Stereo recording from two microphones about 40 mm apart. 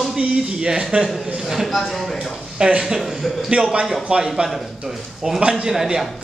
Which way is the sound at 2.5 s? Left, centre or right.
Right.